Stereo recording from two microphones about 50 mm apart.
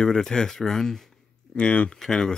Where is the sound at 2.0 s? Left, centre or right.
Centre.